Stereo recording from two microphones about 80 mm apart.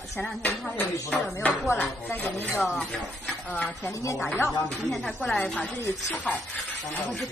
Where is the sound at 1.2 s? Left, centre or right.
Left.